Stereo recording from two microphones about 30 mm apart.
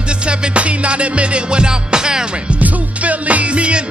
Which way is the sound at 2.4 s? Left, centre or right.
Right.